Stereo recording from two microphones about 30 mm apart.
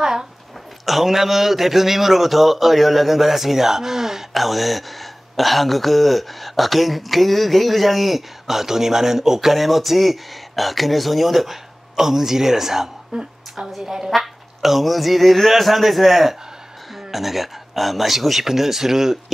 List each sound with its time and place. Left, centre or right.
0.0 s a sound: centre
0.8 s a man's voice: centre
4.3 s a man's voice: centre
14.1 s a man's voice: centre